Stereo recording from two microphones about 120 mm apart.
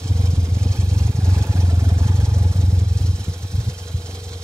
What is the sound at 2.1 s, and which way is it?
Vehicle, 5° left (ahead or behind).